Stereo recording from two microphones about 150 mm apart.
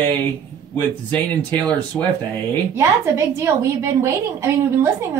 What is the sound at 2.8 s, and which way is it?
A woman's voice, 20° right (ahead or behind).